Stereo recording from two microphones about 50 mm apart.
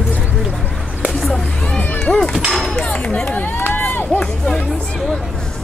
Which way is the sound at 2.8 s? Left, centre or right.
Left.